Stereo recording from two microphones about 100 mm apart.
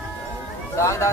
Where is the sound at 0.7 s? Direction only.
30° left (ahead or behind).